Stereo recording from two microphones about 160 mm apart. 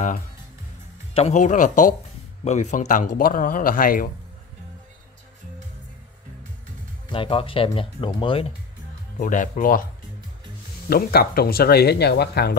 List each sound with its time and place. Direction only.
1.1 s speech: 45° left (ahead or behind); by 4.1 s 60° left (ahead or behind)
7.1 s speech: 35° left (ahead or behind)
9.2 s speech: 55° left (ahead or behind)
10.9 s speech: 70° left (ahead or behind); by 12.5 s 90° left